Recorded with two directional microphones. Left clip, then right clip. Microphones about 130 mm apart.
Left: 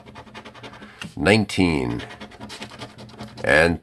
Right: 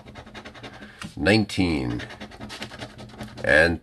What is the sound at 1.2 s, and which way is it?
Speech, 45° left (ahead or behind).